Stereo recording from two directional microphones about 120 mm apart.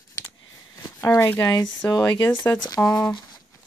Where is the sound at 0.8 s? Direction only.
25° left (ahead or behind).